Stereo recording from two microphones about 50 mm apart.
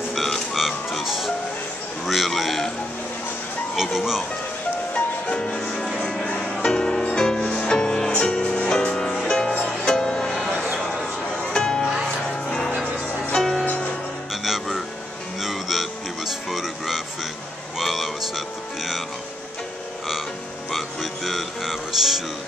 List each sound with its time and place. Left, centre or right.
0.1 s music: centre
2.0 s speech: centre
3.7 s speech: centre
4.9 s music: left
11.5 s music: centre
13.3 s music: centre
14.3 s music: centre
20.7 s music: centre